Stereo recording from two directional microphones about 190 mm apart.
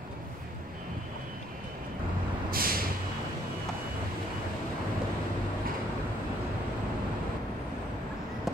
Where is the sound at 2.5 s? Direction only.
50° right (ahead or behind).